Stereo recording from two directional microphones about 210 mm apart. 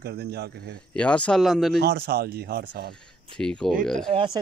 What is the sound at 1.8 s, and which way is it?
Speech, 50° right (ahead or behind).